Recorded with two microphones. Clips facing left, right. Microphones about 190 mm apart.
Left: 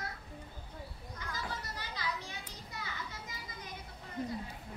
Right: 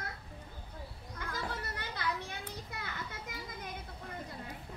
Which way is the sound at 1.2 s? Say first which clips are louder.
Right 3 dB; 55° right (ahead or behind).